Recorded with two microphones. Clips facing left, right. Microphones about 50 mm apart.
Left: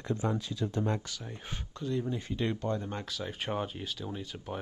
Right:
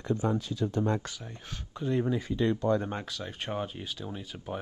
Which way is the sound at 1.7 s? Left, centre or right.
Centre.